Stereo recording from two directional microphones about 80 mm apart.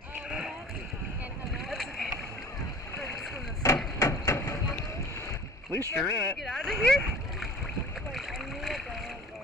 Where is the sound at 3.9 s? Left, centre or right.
Left.